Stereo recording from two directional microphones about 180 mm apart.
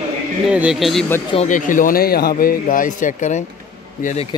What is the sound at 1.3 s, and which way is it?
A man's voice, 45° left (ahead or behind).